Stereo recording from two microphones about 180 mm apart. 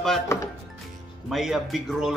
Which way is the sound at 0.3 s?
15° left (ahead or behind).